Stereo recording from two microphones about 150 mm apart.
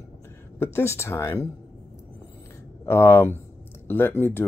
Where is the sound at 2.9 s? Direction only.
15° left (ahead or behind).